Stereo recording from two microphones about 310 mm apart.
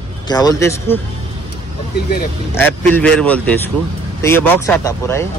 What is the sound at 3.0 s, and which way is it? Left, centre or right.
Speech, centre.